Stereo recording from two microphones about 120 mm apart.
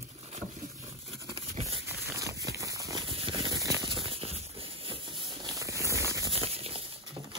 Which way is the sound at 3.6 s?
25° right (ahead or behind).